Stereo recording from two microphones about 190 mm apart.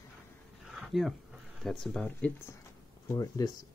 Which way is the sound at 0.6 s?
Centre (ahead or behind).